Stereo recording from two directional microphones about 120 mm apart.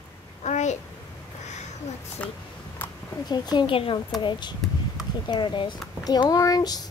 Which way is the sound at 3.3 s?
35° left (ahead or behind).